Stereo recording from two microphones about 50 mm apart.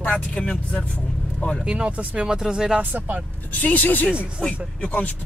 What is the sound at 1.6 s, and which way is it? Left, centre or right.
Speech, right.